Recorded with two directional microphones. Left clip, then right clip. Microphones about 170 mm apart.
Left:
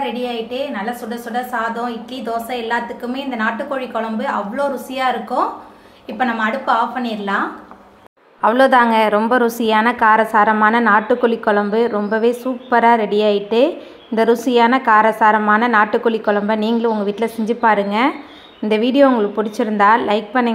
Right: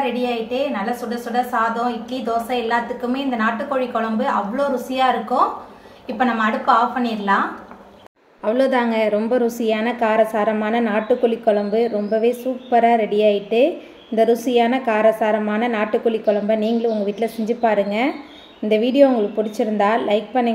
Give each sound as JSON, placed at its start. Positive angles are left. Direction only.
{"t": 0.0, "sound": "a woman's voice", "side_deg": 20}
{"t": 8.4, "sound": "a woman's voice", "side_deg": 0}